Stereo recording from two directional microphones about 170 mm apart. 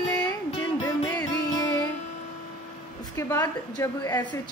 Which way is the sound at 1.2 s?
20° left (ahead or behind).